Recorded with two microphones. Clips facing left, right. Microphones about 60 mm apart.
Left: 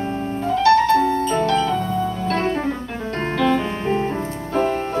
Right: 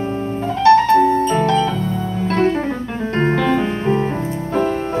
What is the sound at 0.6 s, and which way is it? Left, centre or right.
Music, right.